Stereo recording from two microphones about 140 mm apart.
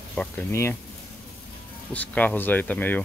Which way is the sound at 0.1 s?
10° left (ahead or behind).